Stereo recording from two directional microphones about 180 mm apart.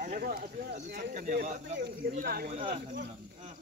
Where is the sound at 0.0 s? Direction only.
50° right (ahead or behind).